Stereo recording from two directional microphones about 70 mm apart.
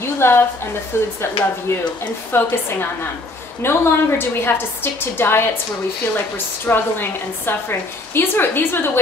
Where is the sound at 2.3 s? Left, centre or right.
Left.